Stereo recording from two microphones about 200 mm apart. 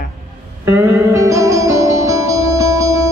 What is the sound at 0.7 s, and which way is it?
Music, 15° right (ahead or behind).